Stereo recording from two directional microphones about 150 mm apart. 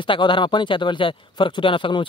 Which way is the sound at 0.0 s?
35° left (ahead or behind).